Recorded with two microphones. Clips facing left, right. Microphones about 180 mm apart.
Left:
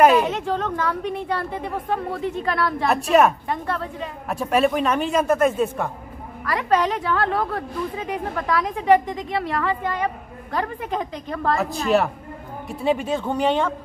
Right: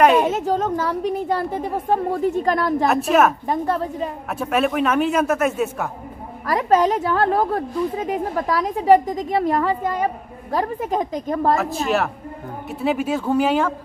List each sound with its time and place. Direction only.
0.2 s a woman's voice: 45° right (ahead or behind)
2.9 s a man's voice: centre (ahead or behind)
3.4 s a woman's voice: 40° right (ahead or behind)
4.3 s a man's voice: centre (ahead or behind)
6.4 s a woman's voice: 45° right (ahead or behind)
11.5 s a man's voice: centre (ahead or behind)